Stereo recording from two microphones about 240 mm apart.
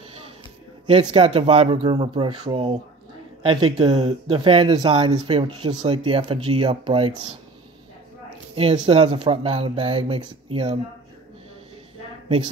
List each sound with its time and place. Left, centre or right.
1.1 s speech: right
8.5 s speech: right